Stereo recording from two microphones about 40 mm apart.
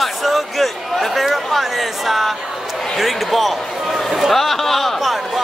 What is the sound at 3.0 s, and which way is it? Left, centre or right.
A man's voice, centre.